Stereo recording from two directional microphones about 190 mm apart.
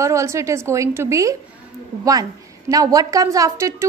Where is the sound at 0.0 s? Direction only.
15° right (ahead or behind).